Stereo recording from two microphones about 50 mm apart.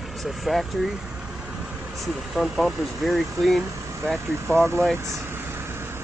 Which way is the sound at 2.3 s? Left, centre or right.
Centre.